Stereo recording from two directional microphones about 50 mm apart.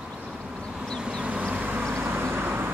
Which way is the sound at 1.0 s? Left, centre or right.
Centre.